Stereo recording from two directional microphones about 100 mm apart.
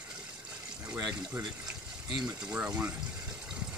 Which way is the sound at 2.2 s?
10° right (ahead or behind).